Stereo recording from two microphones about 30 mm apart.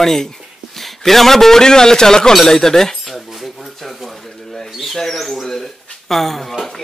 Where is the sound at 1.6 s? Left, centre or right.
Left.